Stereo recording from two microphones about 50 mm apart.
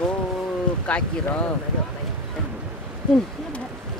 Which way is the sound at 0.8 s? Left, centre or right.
Left.